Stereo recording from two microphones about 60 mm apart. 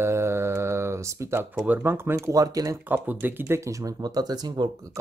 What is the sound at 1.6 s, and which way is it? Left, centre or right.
Speech, right.